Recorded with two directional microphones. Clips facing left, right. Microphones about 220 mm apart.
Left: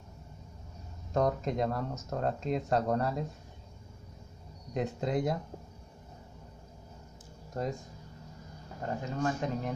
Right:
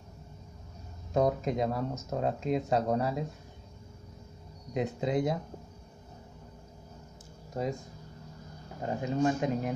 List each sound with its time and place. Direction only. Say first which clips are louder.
1.1 s speech: right 2 dB; 5° right (ahead or behind)
4.7 s speech: right 2 dB; centre (ahead or behind)
8.8 s speech: right 4 dB; 15° right (ahead or behind)